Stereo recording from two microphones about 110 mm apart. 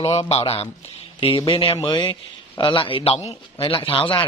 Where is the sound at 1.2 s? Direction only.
55° left (ahead or behind).